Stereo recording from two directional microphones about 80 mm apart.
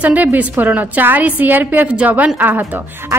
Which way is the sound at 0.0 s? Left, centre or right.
Centre.